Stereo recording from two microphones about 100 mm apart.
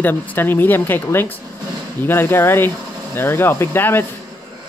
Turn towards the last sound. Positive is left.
turn(degrees=20)  # may be behind; listen again after turning